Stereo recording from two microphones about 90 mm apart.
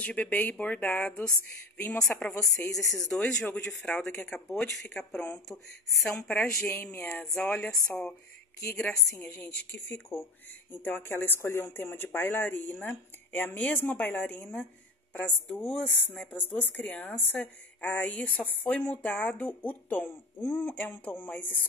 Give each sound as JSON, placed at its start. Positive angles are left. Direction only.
{"t": 0.0, "sound": "speech", "side_deg": 15}
{"t": 6.1, "sound": "speech", "side_deg": 10}